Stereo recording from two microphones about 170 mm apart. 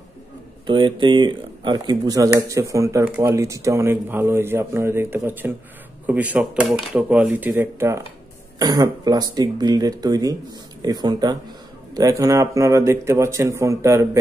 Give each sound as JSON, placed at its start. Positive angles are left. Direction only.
{"t": 0.7, "sound": "speech", "side_deg": -30}